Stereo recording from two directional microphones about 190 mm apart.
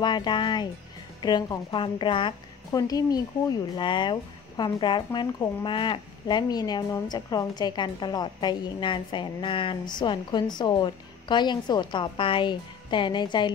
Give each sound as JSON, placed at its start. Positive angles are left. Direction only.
{"t": 0.0, "sound": "a woman's voice", "side_deg": 25}